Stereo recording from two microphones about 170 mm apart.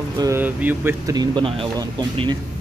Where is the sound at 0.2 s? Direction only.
15° right (ahead or behind).